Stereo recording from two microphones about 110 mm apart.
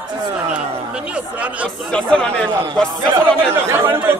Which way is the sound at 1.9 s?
10° left (ahead or behind).